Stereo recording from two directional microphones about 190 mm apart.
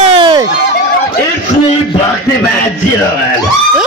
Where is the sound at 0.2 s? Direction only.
25° right (ahead or behind).